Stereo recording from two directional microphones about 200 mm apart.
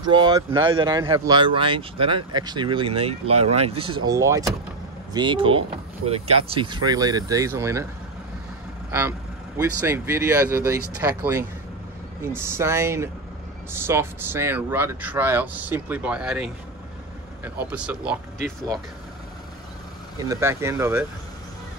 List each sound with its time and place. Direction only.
0.0 s speech: 20° right (ahead or behind)
4.1 s speech: 15° right (ahead or behind)
9.6 s speech: 15° right (ahead or behind)
20.2 s speech: 15° right (ahead or behind)